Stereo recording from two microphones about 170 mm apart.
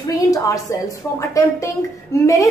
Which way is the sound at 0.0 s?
20° left (ahead or behind).